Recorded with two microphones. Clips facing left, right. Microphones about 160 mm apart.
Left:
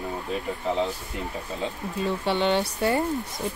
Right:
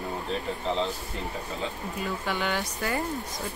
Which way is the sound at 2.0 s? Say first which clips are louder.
Left 6 dB; 25° left (ahead or behind).